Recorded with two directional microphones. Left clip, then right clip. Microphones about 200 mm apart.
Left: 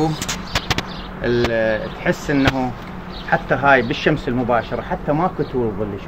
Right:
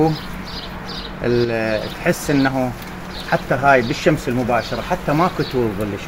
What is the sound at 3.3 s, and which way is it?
Speech, 25° right (ahead or behind).